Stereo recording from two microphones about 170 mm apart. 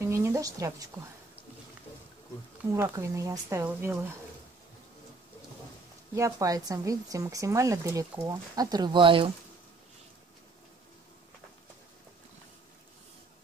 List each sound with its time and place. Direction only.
0.1 s a sound: 15° right (ahead or behind)
2.7 s speech: 15° right (ahead or behind)
6.1 s speech: 20° right (ahead or behind)